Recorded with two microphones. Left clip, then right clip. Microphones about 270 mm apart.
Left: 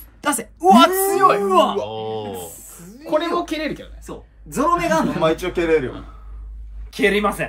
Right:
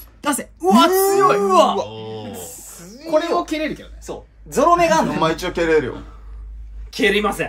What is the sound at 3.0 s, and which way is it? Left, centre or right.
Speech, centre.